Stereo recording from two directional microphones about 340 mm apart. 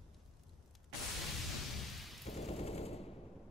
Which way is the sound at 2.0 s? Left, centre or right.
Centre.